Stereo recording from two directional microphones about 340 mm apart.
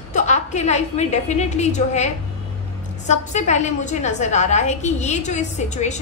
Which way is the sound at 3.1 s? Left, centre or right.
Left.